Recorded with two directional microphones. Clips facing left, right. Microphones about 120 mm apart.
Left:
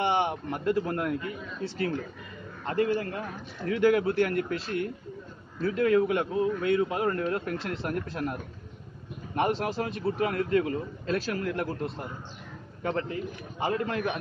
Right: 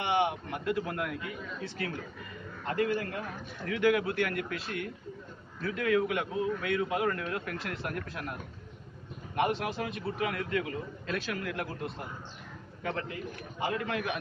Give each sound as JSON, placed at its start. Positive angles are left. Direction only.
{"t": 0.0, "sound": "a man's voice", "side_deg": 35}
{"t": 9.3, "sound": "a man's voice", "side_deg": 35}
{"t": 12.9, "sound": "a man's voice", "side_deg": 35}